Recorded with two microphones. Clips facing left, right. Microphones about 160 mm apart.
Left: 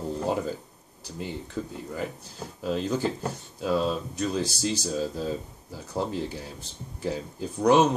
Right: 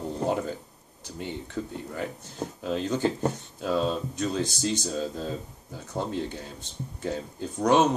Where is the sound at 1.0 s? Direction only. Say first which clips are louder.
Even; centre (ahead or behind).